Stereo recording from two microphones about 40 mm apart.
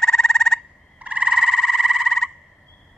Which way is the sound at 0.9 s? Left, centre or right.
Right.